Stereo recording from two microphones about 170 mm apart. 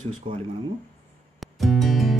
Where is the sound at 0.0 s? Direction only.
45° right (ahead or behind).